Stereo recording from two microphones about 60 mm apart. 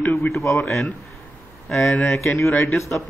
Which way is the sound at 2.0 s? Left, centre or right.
Left.